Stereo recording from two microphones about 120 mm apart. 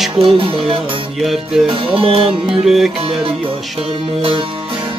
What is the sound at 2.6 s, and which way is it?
Music, 5° right (ahead or behind).